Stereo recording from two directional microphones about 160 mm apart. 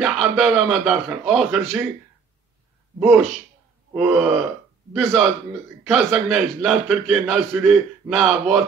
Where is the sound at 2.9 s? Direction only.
10° right (ahead or behind).